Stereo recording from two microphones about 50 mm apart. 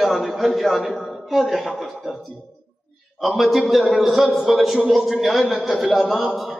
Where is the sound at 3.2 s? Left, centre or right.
Centre.